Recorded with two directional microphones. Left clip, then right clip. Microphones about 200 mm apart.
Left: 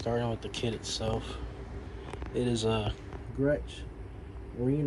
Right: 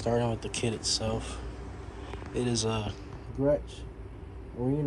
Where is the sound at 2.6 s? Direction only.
Centre (ahead or behind).